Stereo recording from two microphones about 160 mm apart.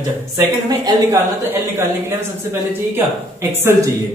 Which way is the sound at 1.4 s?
15° right (ahead or behind).